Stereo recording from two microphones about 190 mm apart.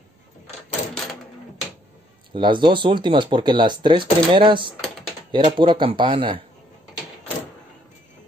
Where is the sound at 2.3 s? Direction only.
25° right (ahead or behind).